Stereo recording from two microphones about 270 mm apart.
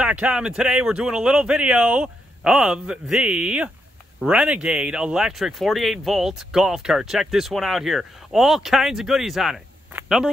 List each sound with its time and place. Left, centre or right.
0.0 s speech: centre